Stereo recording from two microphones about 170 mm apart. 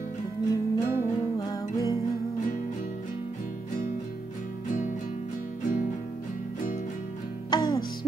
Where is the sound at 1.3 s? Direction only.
20° left (ahead or behind).